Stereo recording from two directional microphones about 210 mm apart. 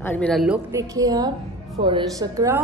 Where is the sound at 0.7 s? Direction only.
15° right (ahead or behind).